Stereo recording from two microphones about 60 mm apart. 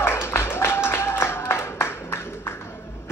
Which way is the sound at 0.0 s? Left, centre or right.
Left.